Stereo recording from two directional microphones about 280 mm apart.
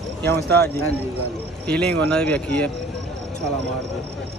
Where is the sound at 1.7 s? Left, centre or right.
Centre.